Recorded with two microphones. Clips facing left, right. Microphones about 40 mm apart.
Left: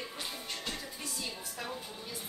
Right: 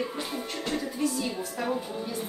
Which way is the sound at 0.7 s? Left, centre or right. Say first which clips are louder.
Right 12 dB; centre.